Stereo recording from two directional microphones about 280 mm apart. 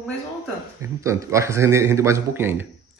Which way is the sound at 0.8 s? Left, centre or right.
Centre.